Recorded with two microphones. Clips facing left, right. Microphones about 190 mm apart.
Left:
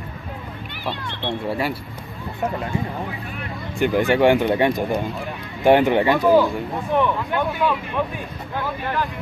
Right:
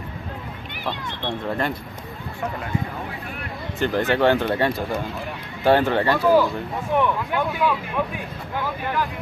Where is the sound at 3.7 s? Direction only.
15° left (ahead or behind).